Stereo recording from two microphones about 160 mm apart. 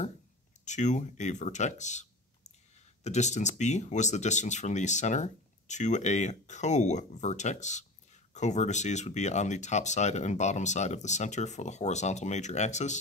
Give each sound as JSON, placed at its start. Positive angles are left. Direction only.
{"t": 0.7, "sound": "speech", "side_deg": 50}